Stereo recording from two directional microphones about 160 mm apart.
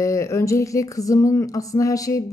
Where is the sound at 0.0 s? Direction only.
20° left (ahead or behind).